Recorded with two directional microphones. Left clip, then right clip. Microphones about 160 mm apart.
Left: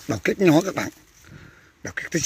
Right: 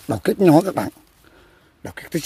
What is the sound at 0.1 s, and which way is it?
Speech, 25° right (ahead or behind).